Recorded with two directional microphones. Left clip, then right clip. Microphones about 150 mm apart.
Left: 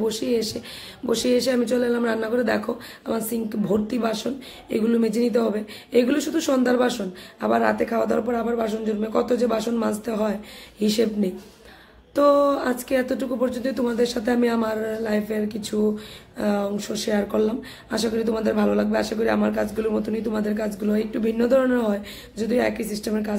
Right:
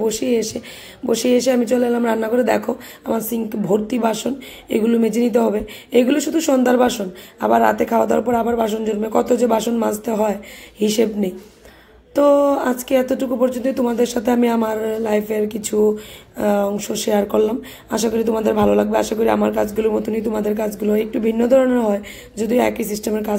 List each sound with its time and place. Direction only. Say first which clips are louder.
0.0 s speech: right 5 dB; 15° right (ahead or behind)